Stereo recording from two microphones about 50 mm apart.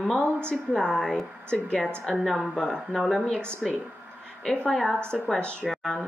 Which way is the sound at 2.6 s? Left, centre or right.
Centre.